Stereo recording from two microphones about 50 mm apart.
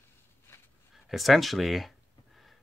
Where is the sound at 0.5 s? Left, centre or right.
Left.